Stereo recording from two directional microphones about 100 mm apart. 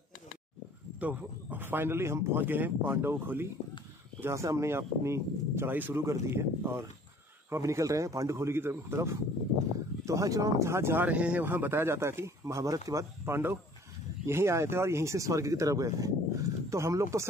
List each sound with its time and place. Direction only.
0.9 s speech: 15° right (ahead or behind); by 13.0 s 35° right (ahead or behind)
13.2 s speech: 25° right (ahead or behind)